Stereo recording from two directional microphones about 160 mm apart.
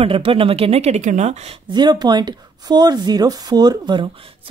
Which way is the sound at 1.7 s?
25° right (ahead or behind).